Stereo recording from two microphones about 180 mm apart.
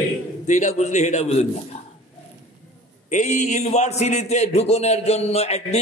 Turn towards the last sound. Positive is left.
turn(degrees=35)  # may be behind; listen again after turning